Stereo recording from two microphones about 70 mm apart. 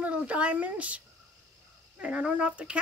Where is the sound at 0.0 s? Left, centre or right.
Centre.